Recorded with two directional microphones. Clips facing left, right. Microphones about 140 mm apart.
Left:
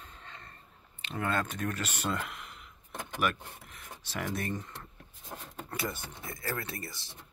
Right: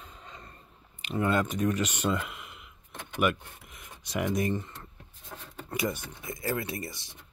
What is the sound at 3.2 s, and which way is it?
Speech, 10° right (ahead or behind).